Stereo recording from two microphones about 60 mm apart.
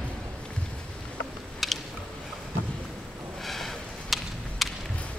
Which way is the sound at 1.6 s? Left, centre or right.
Centre.